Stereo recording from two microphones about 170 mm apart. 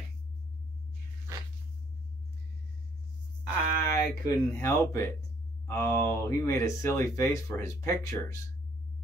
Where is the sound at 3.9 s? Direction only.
15° left (ahead or behind).